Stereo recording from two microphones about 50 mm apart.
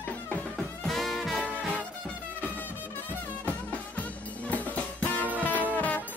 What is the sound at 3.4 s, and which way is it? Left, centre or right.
Music, left.